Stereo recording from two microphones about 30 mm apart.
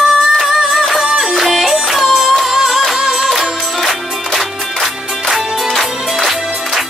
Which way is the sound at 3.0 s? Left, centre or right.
Right.